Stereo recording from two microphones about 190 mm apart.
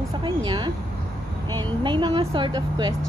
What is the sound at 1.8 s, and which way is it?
A woman's voice, 25° right (ahead or behind).